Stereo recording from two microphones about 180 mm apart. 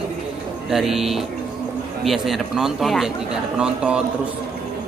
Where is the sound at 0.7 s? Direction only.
Centre (ahead or behind).